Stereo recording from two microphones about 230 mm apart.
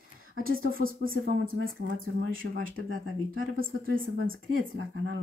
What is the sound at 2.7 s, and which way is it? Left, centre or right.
Speech, right.